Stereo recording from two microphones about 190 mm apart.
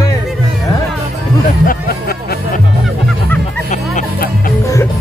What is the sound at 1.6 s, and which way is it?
Music, 55° left (ahead or behind).